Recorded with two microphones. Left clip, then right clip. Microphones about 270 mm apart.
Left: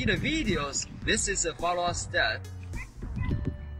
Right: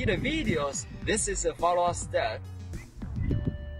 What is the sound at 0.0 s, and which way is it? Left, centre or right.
Speech, right.